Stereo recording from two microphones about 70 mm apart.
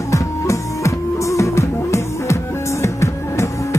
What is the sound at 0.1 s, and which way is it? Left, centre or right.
Music, left.